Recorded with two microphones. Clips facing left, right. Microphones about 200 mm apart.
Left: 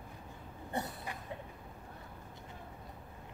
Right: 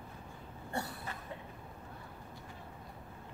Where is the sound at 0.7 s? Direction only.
20° left (ahead or behind).